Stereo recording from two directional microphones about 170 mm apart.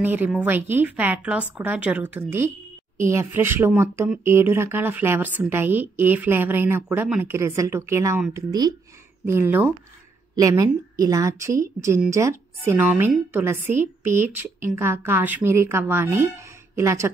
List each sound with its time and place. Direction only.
0.0 s speech: 10° right (ahead or behind)